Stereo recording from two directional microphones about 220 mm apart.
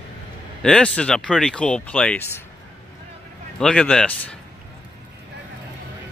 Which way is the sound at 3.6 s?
5° left (ahead or behind).